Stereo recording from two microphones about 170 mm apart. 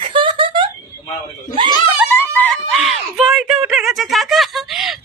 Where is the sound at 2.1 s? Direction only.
10° left (ahead or behind).